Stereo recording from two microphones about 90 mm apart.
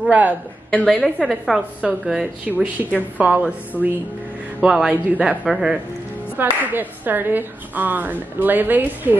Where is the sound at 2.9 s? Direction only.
15° right (ahead or behind).